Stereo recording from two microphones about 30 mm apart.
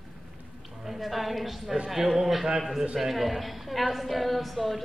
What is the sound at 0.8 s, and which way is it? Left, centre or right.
A woman's voice, centre.